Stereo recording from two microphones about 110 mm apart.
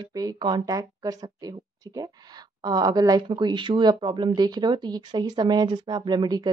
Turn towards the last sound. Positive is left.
turn(degrees=-40)  # may be behind; listen again after turning